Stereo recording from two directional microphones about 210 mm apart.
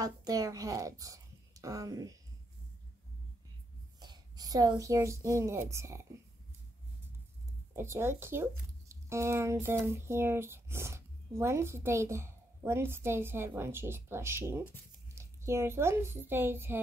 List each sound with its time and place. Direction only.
0.0 s a woman's voice: 15° right (ahead or behind)
4.0 s a woman's voice: 20° right (ahead or behind)
7.7 s speech: 10° right (ahead or behind)